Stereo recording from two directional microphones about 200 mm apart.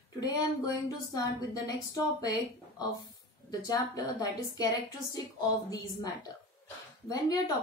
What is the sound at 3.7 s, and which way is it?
Speech, 20° left (ahead or behind).